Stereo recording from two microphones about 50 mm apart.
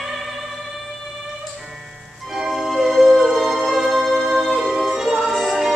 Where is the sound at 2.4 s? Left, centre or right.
Centre.